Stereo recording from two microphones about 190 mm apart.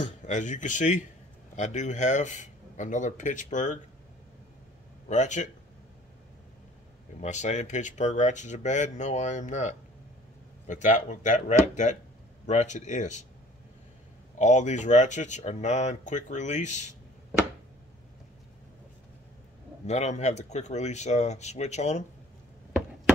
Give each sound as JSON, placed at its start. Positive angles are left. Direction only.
{"t": 0.0, "sound": "speech", "side_deg": 40}
{"t": 5.0, "sound": "speech", "side_deg": 40}
{"t": 7.2, "sound": "speech", "side_deg": 40}
{"t": 14.4, "sound": "speech", "side_deg": 40}
{"t": 19.9, "sound": "speech", "side_deg": 35}